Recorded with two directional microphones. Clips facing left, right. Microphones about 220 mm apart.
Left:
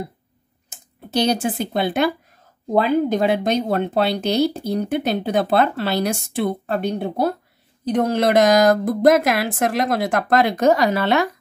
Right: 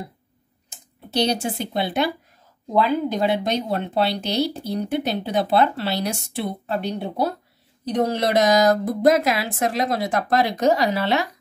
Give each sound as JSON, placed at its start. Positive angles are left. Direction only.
{"t": 0.7, "sound": "speech", "side_deg": 50}